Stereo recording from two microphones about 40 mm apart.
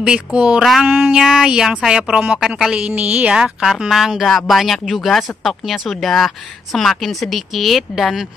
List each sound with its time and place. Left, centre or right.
0.0 s speech: right
0.6 s speech: centre
0.8 s speech: right
2.1 s a woman's voice: right
3.3 s speech: right
3.9 s speech: centre